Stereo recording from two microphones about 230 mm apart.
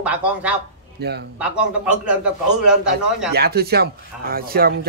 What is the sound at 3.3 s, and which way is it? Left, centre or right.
Speech, right.